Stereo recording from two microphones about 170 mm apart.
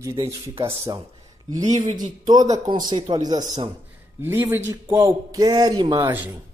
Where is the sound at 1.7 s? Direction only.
25° right (ahead or behind).